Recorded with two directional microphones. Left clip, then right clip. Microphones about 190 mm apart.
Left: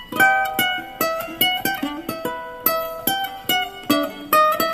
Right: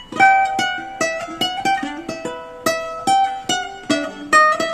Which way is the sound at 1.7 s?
45° left (ahead or behind).